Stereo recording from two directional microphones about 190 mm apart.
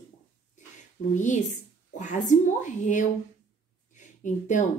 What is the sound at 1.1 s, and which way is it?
A woman's voice, 40° left (ahead or behind).